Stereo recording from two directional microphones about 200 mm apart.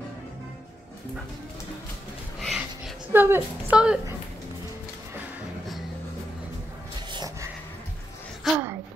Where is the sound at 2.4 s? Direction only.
Centre (ahead or behind).